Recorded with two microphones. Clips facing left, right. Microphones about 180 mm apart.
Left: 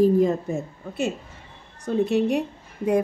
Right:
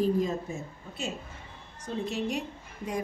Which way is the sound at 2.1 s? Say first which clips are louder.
Left 10 dB; 60° left (ahead or behind).